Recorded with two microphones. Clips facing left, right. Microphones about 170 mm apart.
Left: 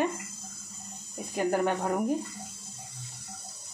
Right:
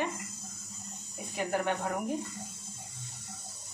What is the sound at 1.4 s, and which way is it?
Speech, 45° left (ahead or behind).